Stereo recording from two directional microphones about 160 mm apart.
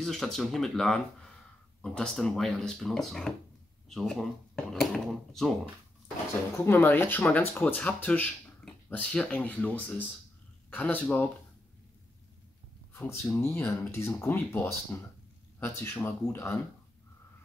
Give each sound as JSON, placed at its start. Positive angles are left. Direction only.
{"t": 0.0, "sound": "speech", "side_deg": 0}
{"t": 6.5, "sound": "speech", "side_deg": 15}
{"t": 13.3, "sound": "speech", "side_deg": 15}